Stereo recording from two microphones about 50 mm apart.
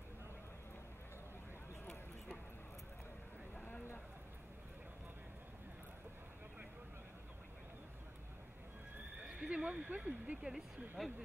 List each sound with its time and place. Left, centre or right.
9.3 s speech: centre
11.0 s speech: centre